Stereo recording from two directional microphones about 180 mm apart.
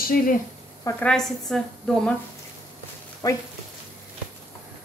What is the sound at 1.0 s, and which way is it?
A woman's voice, 5° left (ahead or behind).